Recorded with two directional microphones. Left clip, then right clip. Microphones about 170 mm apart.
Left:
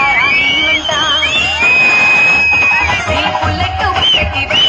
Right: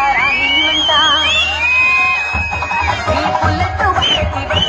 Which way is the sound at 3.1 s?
15° right (ahead or behind).